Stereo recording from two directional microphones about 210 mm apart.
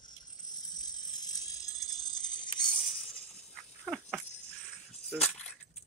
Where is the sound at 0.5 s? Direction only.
20° left (ahead or behind).